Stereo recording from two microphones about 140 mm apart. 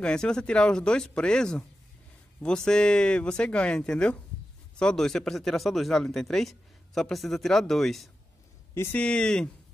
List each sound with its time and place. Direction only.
0.0 s speech: 5° left (ahead or behind)
8.7 s speech: 15° left (ahead or behind)
9.0 s speech: 5° left (ahead or behind)